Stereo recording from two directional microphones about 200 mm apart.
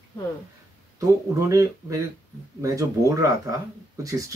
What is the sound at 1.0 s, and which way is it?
Speech, 15° right (ahead or behind).